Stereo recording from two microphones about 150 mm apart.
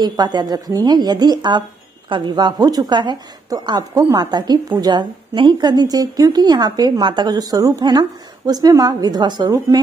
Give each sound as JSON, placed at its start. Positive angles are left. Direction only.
{"t": 0.0, "sound": "a woman's voice", "side_deg": -30}